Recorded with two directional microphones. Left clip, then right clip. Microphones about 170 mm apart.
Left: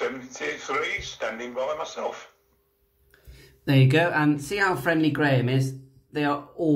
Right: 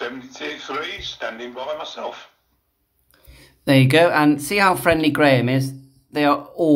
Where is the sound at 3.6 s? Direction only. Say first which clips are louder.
Right 7 dB; 40° right (ahead or behind).